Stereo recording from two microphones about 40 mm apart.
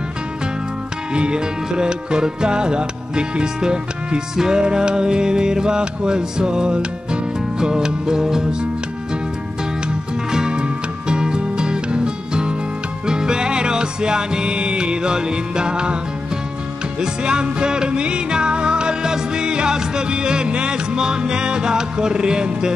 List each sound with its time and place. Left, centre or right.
1.1 s music: right
10.3 s music: centre
17.0 s music: right